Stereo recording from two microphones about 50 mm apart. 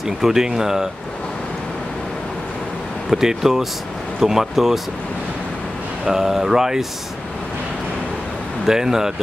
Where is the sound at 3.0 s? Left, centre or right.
Centre.